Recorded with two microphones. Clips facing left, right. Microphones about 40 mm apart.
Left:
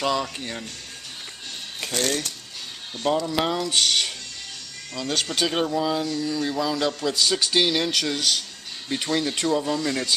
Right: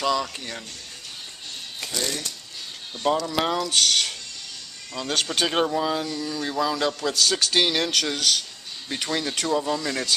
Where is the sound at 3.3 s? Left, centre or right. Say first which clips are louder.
Even; centre.